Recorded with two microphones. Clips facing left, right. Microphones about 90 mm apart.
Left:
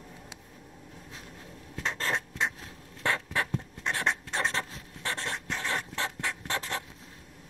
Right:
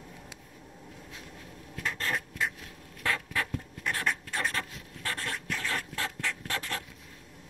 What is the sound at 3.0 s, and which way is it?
Writing, 20° left (ahead or behind).